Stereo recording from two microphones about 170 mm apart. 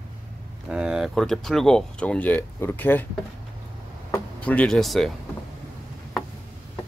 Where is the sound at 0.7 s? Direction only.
5° right (ahead or behind); by 3.0 s 10° left (ahead or behind).